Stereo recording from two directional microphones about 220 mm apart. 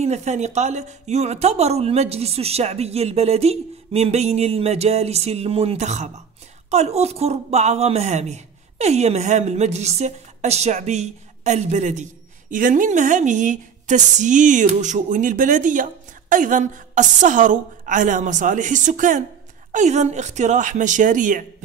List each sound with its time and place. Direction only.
0.0 s a woman's voice: 30° right (ahead or behind)